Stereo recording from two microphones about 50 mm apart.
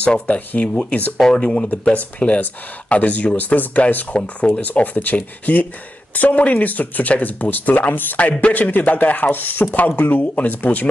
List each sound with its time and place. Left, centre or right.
0.0 s speech: left
1.1 s speech: centre; by 10.9 s left